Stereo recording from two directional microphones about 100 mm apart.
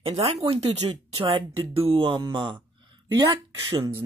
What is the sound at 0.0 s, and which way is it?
Speech, 90° right.